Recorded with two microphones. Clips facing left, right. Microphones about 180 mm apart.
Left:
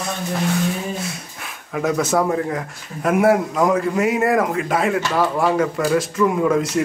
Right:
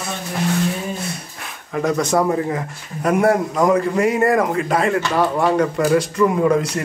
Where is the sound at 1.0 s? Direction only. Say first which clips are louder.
Right 1 dB; centre (ahead or behind).